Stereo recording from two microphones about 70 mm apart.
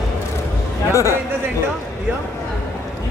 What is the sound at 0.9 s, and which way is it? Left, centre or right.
Speech, left.